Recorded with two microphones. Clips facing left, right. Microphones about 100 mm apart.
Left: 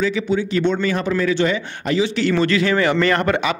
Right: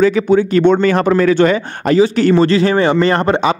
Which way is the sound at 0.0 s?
50° right (ahead or behind).